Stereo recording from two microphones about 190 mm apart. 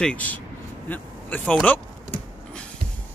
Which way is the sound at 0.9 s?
5° left (ahead or behind).